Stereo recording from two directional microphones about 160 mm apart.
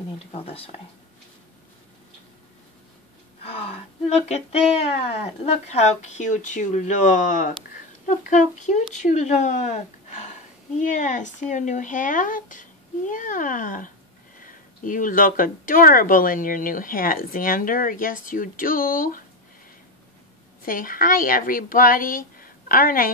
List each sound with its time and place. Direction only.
0.3 s speech: 35° left (ahead or behind)
3.4 s speech: 40° left (ahead or behind); by 19.2 s 60° left (ahead or behind)
20.6 s speech: 60° left (ahead or behind)